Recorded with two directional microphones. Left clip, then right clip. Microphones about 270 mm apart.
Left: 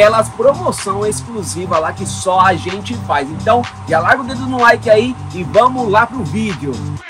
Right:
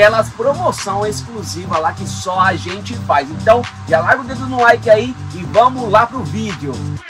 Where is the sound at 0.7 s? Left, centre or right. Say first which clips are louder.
Left 1 dB; centre.